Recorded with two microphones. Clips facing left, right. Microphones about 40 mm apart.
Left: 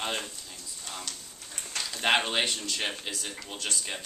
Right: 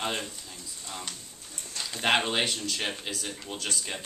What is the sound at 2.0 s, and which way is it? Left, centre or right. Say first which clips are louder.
Speech: even; centre.